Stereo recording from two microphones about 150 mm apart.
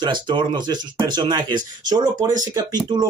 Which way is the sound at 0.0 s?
30° right (ahead or behind).